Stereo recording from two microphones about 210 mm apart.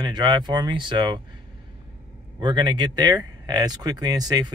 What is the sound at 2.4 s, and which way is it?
Speech, 20° right (ahead or behind).